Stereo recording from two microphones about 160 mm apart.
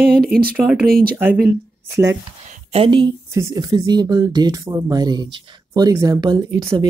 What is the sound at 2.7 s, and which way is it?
Speech, 35° right (ahead or behind).